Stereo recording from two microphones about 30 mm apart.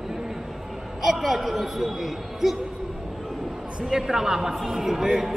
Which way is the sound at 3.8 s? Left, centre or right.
Centre.